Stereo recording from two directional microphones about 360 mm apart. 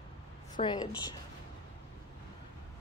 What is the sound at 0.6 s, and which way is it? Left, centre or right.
Speech, centre.